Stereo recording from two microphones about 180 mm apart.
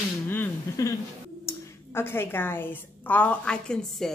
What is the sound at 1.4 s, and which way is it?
A woman's voice, 15° left (ahead or behind).